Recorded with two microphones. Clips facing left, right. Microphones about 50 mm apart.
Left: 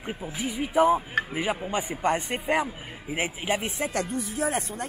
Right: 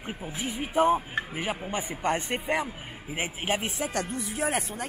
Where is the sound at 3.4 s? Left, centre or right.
Right.